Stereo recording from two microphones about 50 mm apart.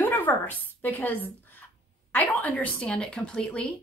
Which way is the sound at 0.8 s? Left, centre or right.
Left.